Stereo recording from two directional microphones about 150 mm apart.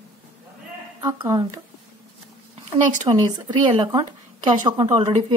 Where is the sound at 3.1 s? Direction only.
30° right (ahead or behind).